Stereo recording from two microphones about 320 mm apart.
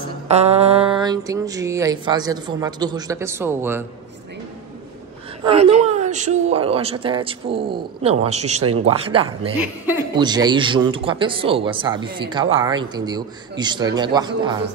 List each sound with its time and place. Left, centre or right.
0.3 s speech: centre
5.4 s speech: centre
9.6 s speech: centre